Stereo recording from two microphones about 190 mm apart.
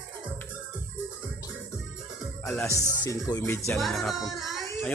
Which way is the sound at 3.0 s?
20° left (ahead or behind).